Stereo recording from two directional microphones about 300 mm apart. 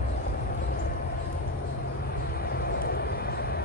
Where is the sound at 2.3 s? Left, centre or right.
Left.